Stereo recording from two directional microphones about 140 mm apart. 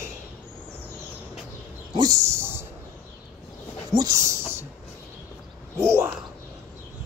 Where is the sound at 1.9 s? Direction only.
25° right (ahead or behind).